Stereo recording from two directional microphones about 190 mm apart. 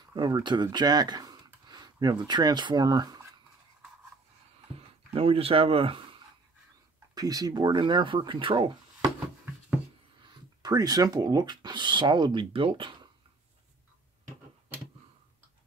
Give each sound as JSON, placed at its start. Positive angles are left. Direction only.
{"t": 0.1, "sound": "speech", "side_deg": -20}
{"t": 4.7, "sound": "speech", "side_deg": -30}
{"t": 7.2, "sound": "speech", "side_deg": -20}
{"t": 10.6, "sound": "speech", "side_deg": -20}